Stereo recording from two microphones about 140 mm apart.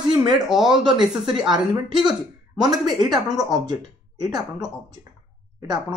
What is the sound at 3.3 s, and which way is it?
Speech, 25° right (ahead or behind).